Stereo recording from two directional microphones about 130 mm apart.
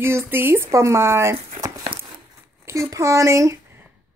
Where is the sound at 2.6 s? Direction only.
20° right (ahead or behind).